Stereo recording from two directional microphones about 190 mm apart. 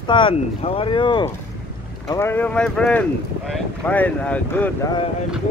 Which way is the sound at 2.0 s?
15° left (ahead or behind).